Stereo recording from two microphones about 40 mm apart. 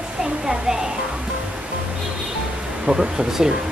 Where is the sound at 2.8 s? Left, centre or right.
Right.